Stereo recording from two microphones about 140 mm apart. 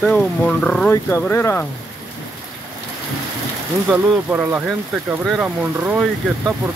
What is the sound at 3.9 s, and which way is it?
Speech, 5° left (ahead or behind).